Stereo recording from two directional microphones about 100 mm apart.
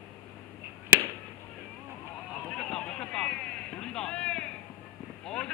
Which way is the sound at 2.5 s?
10° left (ahead or behind).